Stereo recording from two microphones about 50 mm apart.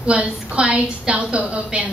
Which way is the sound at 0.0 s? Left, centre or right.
Right.